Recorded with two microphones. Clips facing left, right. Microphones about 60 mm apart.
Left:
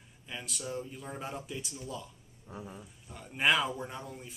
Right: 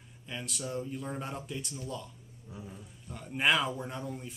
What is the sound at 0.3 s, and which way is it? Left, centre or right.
Speech, centre.